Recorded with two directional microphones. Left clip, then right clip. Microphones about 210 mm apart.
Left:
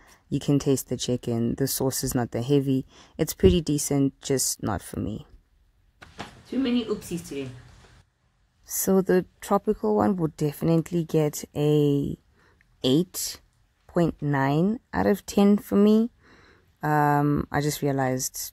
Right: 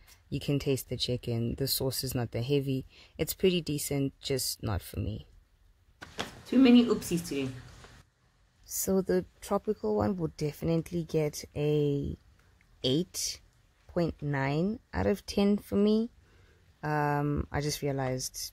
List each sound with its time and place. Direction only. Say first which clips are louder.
0.3 s speech: left 7 dB; 45° left (ahead or behind)
6.6 s speech: right 4 dB; 10° right (ahead or behind)
8.6 s speech: left 7 dB; 40° left (ahead or behind)